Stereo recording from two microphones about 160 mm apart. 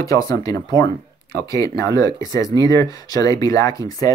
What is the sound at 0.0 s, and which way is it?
Speech, 20° left (ahead or behind).